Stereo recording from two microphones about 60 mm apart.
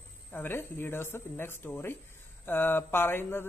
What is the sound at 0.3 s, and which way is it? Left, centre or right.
Speech, left.